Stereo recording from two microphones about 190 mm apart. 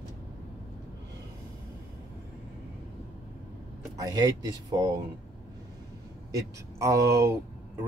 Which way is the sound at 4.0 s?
20° right (ahead or behind).